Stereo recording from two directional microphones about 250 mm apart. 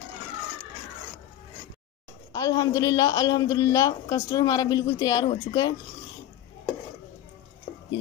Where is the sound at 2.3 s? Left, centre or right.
Centre.